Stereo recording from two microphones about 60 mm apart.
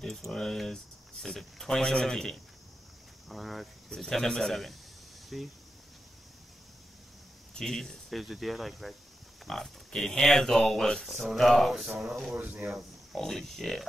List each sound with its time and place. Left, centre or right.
0.0 s speech: centre
7.5 s speech: centre
12.3 s speech: right
13.1 s speech: centre